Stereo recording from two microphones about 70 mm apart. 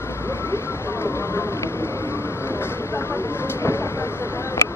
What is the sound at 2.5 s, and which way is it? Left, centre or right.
Vehicle, left.